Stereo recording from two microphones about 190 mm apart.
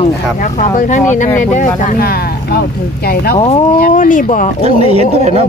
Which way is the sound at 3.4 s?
35° left (ahead or behind).